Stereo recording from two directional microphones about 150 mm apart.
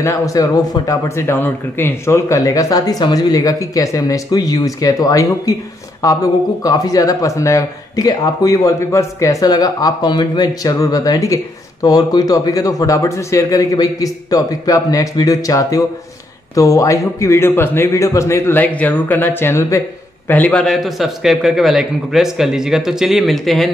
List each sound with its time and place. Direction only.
0.0 s a man's voice: 20° left (ahead or behind); by 23.7 s centre (ahead or behind)